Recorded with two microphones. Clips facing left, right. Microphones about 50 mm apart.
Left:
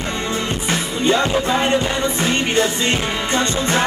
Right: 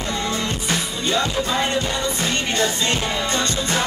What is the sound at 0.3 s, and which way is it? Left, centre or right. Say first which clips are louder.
Music: left 2 dB; left.